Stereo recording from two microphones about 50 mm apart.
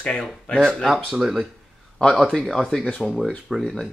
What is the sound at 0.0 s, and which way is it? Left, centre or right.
Speech, centre.